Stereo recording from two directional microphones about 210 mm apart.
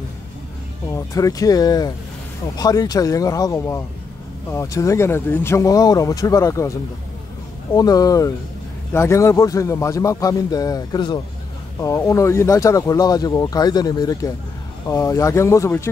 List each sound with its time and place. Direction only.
0.9 s speech: 15° left (ahead or behind)
7.7 s speech: 15° left (ahead or behind)